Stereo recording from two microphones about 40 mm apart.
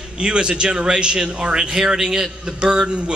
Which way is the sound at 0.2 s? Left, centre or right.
Right.